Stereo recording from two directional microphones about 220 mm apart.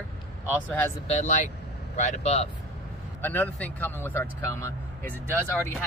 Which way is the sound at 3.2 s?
10° left (ahead or behind).